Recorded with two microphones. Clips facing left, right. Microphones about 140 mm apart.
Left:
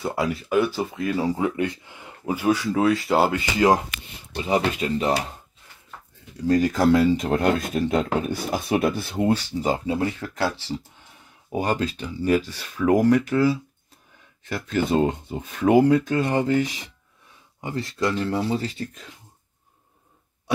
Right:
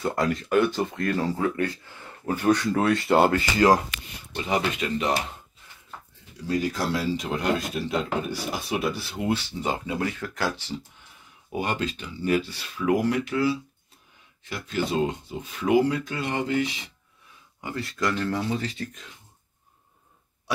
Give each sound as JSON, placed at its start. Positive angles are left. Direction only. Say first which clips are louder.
{"t": 0.0, "sound": "speech", "louder": "even", "side_deg": 10}
{"t": 3.3, "sound": "speech", "louder": "even", "side_deg": 20}
{"t": 4.4, "sound": "speech", "louder": "left 3 dB", "side_deg": 30}
{"t": 6.4, "sound": "speech", "louder": "left 7 dB", "side_deg": 45}
{"t": 11.5, "sound": "speech", "louder": "left 4 dB", "side_deg": 35}
{"t": 17.6, "sound": "speech", "louder": "left 3 dB", "side_deg": 30}